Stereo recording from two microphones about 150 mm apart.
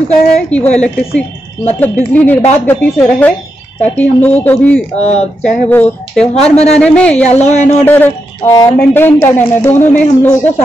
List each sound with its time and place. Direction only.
0.3 s speech: 10° left (ahead or behind)
4.9 s speech: 45° left (ahead or behind)
5.4 s speech: 10° left (ahead or behind)
6.3 s speech: 45° left (ahead or behind)
6.8 s speech: 10° left (ahead or behind)